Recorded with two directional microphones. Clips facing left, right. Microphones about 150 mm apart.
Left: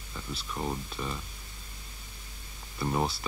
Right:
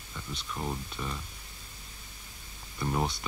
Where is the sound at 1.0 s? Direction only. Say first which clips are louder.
Left 2 dB; 15° left (ahead or behind).